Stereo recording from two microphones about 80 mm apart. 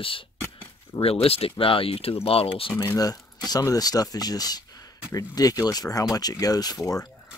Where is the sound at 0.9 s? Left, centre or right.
Left.